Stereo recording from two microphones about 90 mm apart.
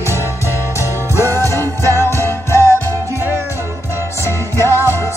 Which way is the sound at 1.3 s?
30° left (ahead or behind).